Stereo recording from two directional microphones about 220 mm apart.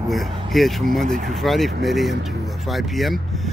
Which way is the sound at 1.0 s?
35° right (ahead or behind).